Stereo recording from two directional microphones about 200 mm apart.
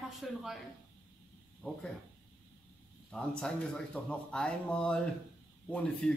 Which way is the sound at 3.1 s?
5° left (ahead or behind).